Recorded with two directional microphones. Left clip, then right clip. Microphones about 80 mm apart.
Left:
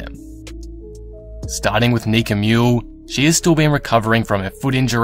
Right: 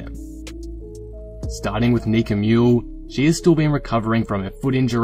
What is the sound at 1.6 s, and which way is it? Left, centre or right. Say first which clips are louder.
Speech: left 5 dB; left.